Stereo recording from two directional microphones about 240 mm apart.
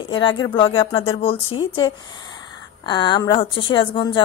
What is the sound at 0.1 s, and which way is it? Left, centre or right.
A woman's voice, centre.